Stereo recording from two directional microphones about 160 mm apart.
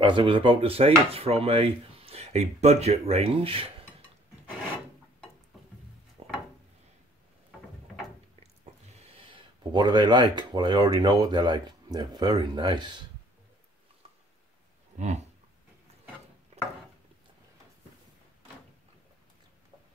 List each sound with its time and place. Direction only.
0.0 s speech: 30° right (ahead or behind)
6.2 s wood: 40° right (ahead or behind)
8.4 s speech: 40° right (ahead or behind)